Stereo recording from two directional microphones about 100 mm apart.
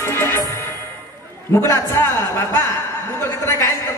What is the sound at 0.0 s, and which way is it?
Music, 25° left (ahead or behind).